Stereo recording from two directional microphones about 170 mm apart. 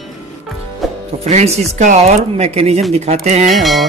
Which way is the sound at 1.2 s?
40° right (ahead or behind).